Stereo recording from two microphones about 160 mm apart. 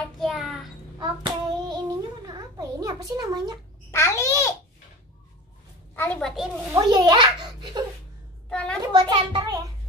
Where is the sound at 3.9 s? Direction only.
20° left (ahead or behind).